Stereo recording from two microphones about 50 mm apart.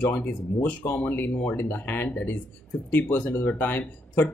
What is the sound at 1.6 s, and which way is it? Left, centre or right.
Speech, left.